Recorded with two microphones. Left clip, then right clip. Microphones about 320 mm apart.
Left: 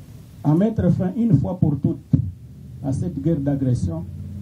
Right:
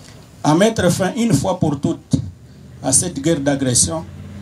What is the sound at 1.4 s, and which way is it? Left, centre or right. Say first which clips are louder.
Music: right 6 dB; right.